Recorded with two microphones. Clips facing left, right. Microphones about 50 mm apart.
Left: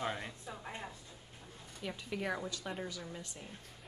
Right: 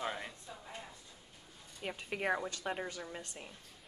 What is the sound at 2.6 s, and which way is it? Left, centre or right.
Speech, right.